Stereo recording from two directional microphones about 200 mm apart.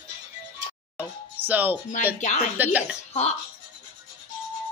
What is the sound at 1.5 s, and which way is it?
Speech, 10° right (ahead or behind).